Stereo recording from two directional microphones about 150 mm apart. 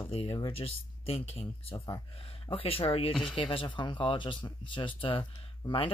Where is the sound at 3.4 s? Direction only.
35° left (ahead or behind).